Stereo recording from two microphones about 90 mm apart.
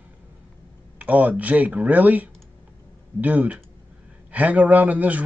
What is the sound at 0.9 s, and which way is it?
Speech, 15° right (ahead or behind).